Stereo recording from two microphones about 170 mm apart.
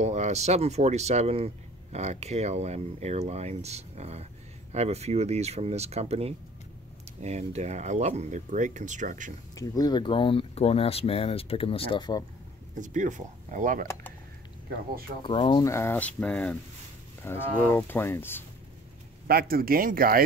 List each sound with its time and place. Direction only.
0.0 s speech: 40° right (ahead or behind)
9.6 s speech: 25° left (ahead or behind)
12.8 s speech: 50° right (ahead or behind)
15.2 s speech: 30° left (ahead or behind)
15.6 s speech: 15° left (ahead or behind)
19.2 s speech: 60° right (ahead or behind)